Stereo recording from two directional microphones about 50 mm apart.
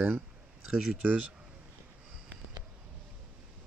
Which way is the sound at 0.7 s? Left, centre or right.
Centre.